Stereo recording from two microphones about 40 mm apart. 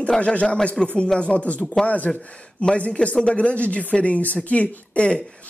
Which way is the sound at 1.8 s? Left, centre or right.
Left.